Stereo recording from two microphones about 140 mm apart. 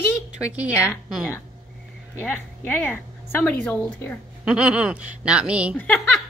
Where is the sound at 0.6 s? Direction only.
10° right (ahead or behind).